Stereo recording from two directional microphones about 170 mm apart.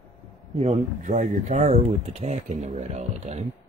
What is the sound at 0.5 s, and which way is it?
Speech, 40° right (ahead or behind).